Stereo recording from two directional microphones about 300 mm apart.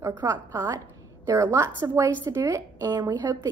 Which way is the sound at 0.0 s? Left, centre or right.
Centre.